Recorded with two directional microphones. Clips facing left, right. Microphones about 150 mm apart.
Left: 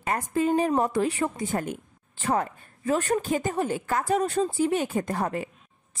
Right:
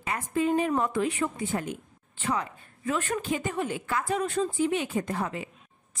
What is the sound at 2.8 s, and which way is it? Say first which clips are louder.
Speech: left 5 dB; 35° left (ahead or behind).